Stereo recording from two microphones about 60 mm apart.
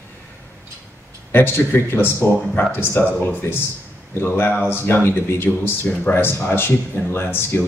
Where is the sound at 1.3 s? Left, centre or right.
Left.